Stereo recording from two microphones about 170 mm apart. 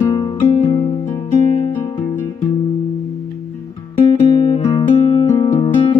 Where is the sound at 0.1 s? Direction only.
30° left (ahead or behind).